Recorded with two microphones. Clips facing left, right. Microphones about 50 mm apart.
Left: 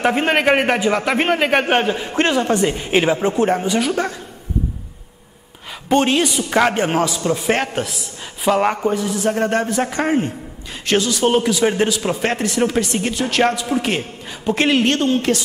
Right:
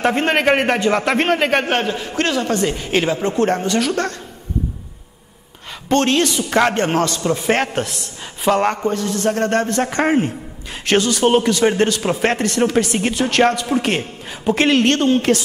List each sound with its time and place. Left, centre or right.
0.0 s a man's voice: centre
5.9 s a man's voice: centre